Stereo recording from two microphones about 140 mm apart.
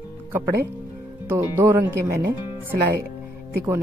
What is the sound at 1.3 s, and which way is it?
Speech, 20° right (ahead or behind).